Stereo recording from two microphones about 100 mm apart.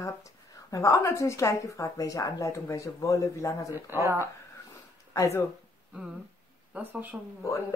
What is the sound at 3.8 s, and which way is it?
Speech, 25° right (ahead or behind).